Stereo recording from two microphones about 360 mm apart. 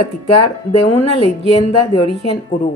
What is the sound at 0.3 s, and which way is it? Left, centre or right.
Speech, centre.